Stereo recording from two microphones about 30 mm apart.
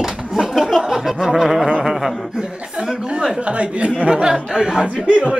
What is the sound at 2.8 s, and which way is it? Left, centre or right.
Speech, right.